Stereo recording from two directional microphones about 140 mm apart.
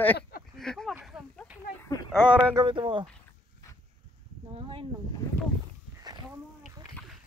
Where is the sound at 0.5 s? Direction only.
5° left (ahead or behind).